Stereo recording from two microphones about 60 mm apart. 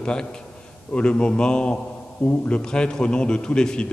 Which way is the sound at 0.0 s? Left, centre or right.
Centre.